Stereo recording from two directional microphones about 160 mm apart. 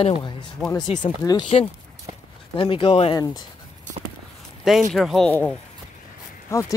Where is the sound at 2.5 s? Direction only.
35° left (ahead or behind).